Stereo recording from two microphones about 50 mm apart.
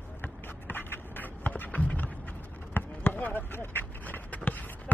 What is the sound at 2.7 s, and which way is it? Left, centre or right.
Basketball bounce, left.